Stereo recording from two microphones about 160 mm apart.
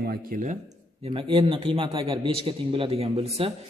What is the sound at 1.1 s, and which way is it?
A man's voice, 35° right (ahead or behind).